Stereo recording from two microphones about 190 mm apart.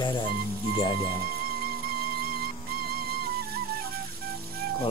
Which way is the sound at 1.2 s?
55° right (ahead or behind).